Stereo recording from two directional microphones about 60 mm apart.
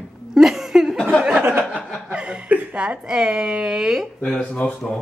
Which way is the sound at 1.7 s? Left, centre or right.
Right.